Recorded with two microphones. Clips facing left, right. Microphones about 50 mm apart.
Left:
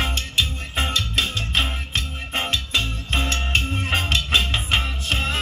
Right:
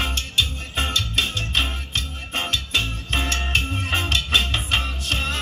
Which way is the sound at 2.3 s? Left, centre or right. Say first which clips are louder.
Even; left.